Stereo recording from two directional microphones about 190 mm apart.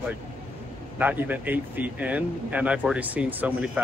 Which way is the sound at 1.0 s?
10° right (ahead or behind).